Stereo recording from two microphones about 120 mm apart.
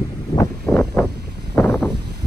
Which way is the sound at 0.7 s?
20° left (ahead or behind).